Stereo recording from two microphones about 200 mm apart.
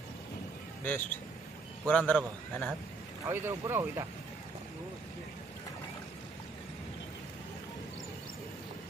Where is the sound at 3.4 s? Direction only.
10° right (ahead or behind).